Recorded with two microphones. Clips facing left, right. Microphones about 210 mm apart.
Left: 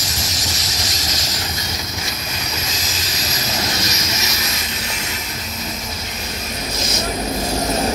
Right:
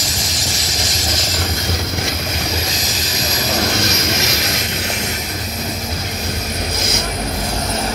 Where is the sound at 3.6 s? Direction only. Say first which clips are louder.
Right 5 dB; 55° right (ahead or behind).